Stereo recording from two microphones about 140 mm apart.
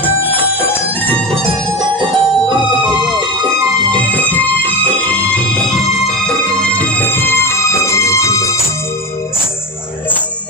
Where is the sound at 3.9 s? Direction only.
10° left (ahead or behind).